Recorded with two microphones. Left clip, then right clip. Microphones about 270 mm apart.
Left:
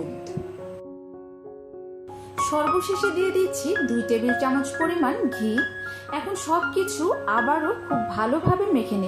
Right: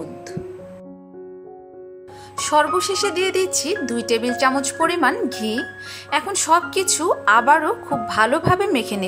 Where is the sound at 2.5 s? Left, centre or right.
Right.